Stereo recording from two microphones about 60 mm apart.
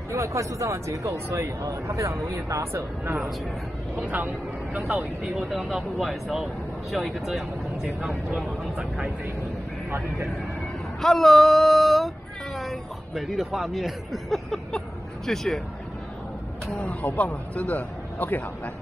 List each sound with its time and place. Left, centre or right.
0.1 s speech: right
1.6 s speech: right
3.9 s speech: right
5.4 s speech: centre
9.8 s speech: right
11.0 s speech: centre
16.7 s speech: left